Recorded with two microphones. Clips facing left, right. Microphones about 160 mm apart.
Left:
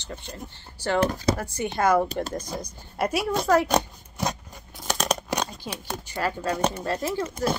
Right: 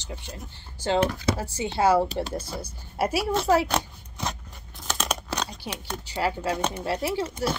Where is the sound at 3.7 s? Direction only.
15° left (ahead or behind).